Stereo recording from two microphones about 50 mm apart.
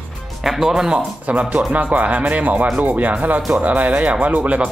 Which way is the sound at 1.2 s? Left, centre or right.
Right.